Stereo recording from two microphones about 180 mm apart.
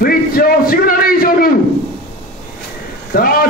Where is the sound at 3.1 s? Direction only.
55° left (ahead or behind).